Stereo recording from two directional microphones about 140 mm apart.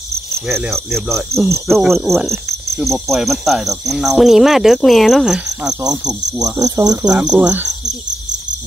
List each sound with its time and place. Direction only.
0.7 s cricket: centre (ahead or behind)
5.7 s cricket: 25° right (ahead or behind)
7.1 s cricket: 5° right (ahead or behind)